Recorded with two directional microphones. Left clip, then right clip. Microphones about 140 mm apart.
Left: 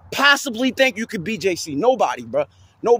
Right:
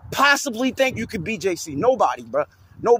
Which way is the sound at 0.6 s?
25° left (ahead or behind).